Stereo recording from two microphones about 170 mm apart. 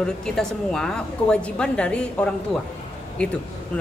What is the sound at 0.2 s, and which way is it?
A woman's voice, 5° left (ahead or behind).